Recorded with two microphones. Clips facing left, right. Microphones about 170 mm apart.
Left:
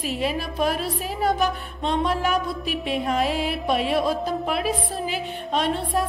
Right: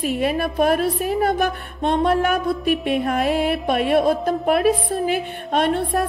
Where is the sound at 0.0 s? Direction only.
55° right (ahead or behind).